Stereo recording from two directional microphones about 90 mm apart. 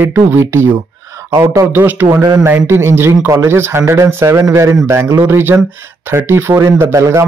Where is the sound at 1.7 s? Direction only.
20° right (ahead or behind).